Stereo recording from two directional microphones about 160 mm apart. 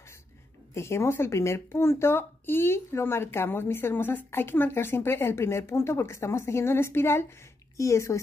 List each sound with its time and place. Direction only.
0.7 s speech: 15° left (ahead or behind)